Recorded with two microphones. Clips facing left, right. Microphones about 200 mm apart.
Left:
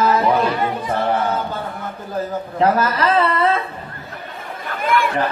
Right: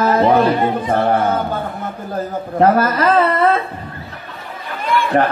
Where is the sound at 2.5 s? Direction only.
50° right (ahead or behind).